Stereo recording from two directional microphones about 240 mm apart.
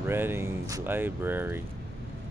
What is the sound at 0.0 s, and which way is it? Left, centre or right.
Speech, centre.